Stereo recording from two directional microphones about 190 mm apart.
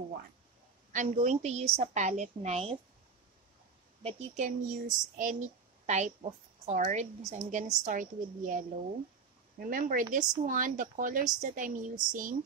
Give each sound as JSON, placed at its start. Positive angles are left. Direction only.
{"t": 0.9, "sound": "speech", "side_deg": -40}
{"t": 4.0, "sound": "speech", "side_deg": -40}